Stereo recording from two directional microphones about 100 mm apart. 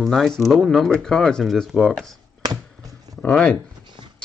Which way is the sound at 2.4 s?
40° right (ahead or behind).